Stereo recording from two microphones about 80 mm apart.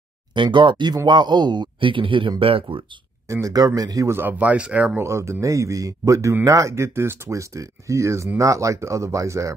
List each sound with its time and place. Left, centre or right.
0.3 s speech: right
3.3 s speech: right
3.5 s a man's voice: right
4.1 s speech: right
4.9 s speech: right